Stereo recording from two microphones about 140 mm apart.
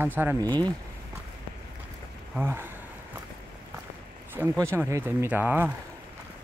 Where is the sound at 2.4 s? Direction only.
15° right (ahead or behind).